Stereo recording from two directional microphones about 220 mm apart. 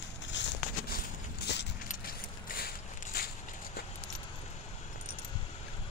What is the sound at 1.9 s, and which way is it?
Keys jangling, 40° left (ahead or behind).